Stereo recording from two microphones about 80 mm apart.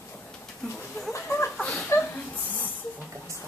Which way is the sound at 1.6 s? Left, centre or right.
Centre.